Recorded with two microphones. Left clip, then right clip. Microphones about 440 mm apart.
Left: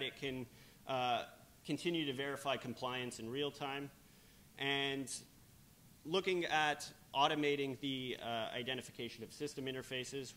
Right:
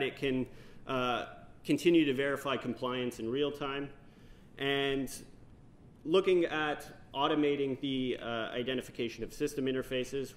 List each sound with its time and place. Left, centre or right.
0.0 s speech: centre
0.9 s a man's voice: centre